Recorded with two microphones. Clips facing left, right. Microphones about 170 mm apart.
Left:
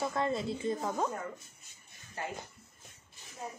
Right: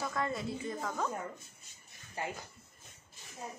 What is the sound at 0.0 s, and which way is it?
Speech, 25° left (ahead or behind).